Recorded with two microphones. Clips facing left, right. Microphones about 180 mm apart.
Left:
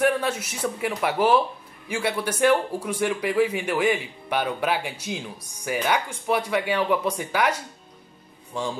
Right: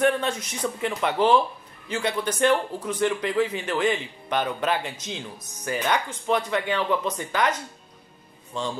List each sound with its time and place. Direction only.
0.0 s speech: 10° left (ahead or behind)